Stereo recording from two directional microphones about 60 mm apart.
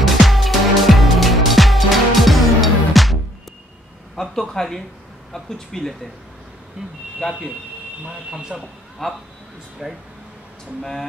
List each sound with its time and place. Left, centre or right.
0.0 s music: centre
4.1 s speech: centre
6.8 s speech: centre
7.2 s speech: centre
8.0 s speech: centre
9.0 s speech: centre